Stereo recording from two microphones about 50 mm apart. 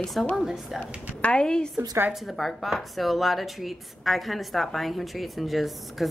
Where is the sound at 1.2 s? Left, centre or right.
Left.